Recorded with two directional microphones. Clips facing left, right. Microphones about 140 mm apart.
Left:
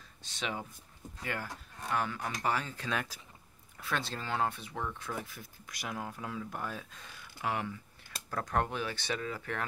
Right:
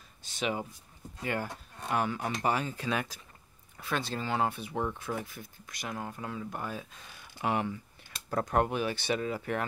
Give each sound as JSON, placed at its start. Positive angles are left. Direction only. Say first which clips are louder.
{"t": 0.4, "sound": "speech", "louder": "right 5 dB", "side_deg": -5}
{"t": 1.2, "sound": "speech", "louder": "right 5 dB", "side_deg": -25}
{"t": 4.7, "sound": "speech", "louder": "right 5 dB", "side_deg": -25}
{"t": 5.0, "sound": "speech", "louder": "right 4 dB", "side_deg": 0}
{"t": 7.3, "sound": "speech", "louder": "right 4 dB", "side_deg": -20}
{"t": 8.6, "sound": "speech", "louder": "right 5 dB", "side_deg": -15}